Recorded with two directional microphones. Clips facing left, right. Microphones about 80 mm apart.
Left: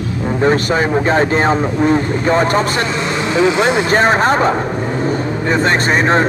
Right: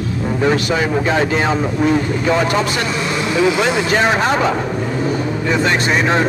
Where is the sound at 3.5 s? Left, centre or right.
Left.